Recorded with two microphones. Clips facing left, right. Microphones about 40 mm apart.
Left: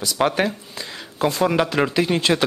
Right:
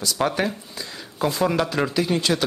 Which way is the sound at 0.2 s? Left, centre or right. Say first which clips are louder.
Left 3 dB; left.